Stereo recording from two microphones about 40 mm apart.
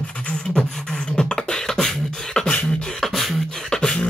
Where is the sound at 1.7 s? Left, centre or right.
Centre.